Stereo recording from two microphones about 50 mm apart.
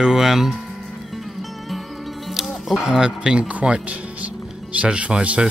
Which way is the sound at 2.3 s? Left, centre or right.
Centre.